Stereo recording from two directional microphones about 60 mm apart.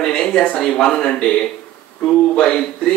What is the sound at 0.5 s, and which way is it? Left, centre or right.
A man's voice, centre.